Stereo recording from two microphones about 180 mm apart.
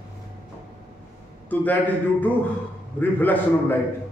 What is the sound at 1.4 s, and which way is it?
A man's voice, 10° left (ahead or behind).